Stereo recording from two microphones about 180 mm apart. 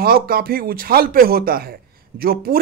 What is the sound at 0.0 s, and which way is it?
Speech, 55° right (ahead or behind).